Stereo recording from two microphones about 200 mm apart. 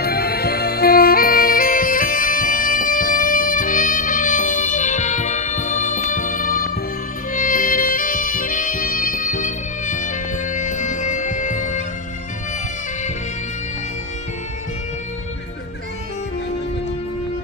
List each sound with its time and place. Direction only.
0.0 s music: 50° left (ahead or behind)